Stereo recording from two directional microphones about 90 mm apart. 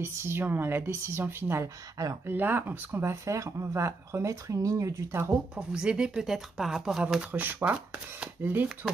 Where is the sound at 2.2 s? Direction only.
20° right (ahead or behind).